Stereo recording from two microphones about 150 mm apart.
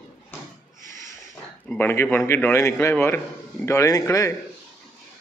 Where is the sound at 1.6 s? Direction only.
15° left (ahead or behind).